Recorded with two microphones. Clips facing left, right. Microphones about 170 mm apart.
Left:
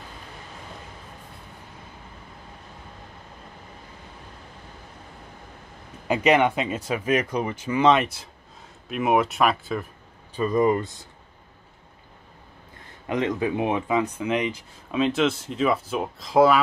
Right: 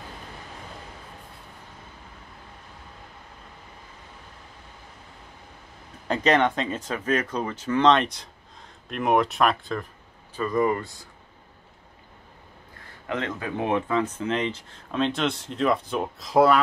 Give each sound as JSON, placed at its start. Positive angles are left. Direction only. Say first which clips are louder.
{"t": 6.0, "sound": "speech", "louder": "left 2 dB", "side_deg": 10}
{"t": 10.3, "sound": "speech", "louder": "left 3 dB", "side_deg": 20}
{"t": 13.0, "sound": "speech", "louder": "left 5 dB", "side_deg": 15}